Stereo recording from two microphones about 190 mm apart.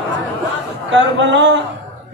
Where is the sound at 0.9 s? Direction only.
75° right (ahead or behind).